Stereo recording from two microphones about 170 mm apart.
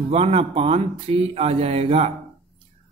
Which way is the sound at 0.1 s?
35° right (ahead or behind).